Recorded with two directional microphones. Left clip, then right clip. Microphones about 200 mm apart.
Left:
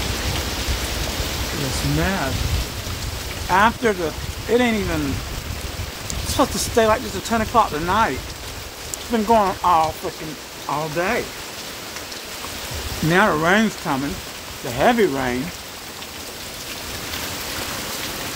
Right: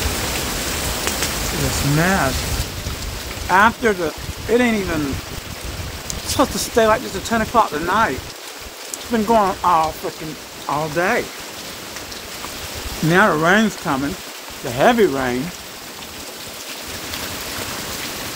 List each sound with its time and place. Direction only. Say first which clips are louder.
2.0 s speech: right 6 dB; 10° right (ahead or behind)
3.4 s speech: right 3 dB; centre (ahead or behind)
6.3 s speech: right 1 dB; 5° left (ahead or behind)
9.1 s speech: right 1 dB; centre (ahead or behind)
13.1 s speech: right 2 dB; centre (ahead or behind)